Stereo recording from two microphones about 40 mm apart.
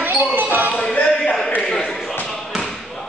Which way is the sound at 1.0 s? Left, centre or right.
Centre.